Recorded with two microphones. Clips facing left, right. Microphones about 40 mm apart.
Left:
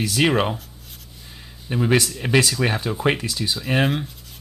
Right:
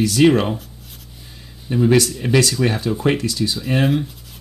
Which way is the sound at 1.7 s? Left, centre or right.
Centre.